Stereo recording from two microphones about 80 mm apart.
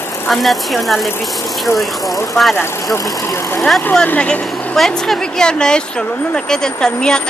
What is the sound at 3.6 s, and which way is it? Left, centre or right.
Speech, centre.